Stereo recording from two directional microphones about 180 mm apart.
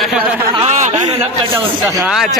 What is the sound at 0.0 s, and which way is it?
Speech, 5° right (ahead or behind).